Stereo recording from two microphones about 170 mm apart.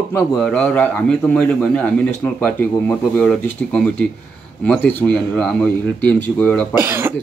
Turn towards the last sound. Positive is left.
turn(degrees=-15)  # may be behind; listen again after turning